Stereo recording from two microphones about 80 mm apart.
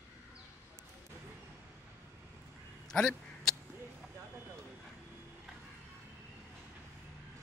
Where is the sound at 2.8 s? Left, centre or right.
Centre.